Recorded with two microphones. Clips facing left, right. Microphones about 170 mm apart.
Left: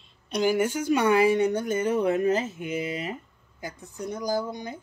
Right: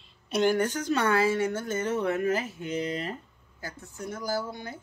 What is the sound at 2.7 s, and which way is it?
Speech, 10° left (ahead or behind).